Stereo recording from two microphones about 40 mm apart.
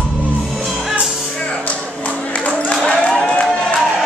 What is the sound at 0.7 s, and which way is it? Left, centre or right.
Music, centre.